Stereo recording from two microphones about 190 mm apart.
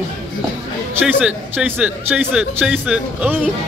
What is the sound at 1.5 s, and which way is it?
Speech, 5° right (ahead or behind).